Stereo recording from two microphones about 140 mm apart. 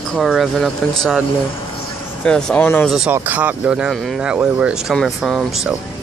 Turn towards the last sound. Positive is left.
turn(degrees=-5)  # may be behind; listen again after turning